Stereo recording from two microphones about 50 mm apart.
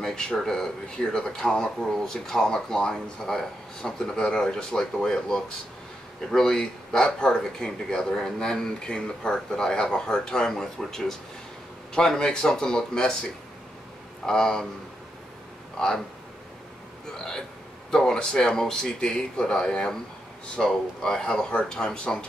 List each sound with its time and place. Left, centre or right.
0.0 s speech: centre
17.2 s speech: centre